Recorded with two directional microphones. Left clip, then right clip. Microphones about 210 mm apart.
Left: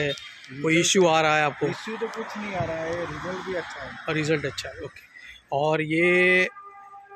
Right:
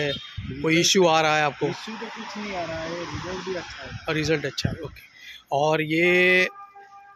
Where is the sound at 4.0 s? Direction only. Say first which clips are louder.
Right 1 dB; centre (ahead or behind).